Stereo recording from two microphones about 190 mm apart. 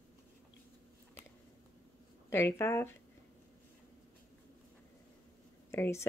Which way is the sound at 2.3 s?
15° left (ahead or behind).